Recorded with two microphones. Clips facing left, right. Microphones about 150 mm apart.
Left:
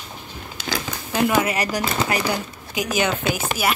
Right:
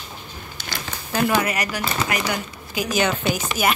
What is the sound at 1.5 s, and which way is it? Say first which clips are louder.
Speech: left 2 dB; 30° left (ahead or behind).